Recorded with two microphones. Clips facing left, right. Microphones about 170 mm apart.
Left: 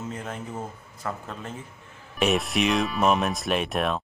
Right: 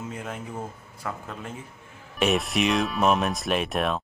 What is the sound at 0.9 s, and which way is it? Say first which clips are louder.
Speech: left 1 dB; 10° right (ahead or behind).